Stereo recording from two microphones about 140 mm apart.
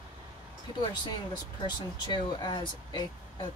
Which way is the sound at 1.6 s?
30° left (ahead or behind).